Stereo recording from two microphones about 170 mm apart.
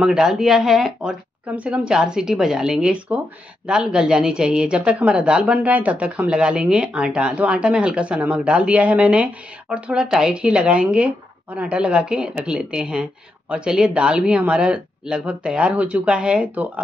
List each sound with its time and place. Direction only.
0.0 s a woman's voice: centre (ahead or behind)